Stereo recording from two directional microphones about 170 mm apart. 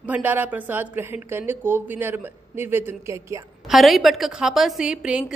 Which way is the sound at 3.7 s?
Centre (ahead or behind).